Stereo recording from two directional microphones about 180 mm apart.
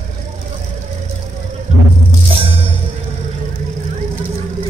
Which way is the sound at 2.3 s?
30° right (ahead or behind).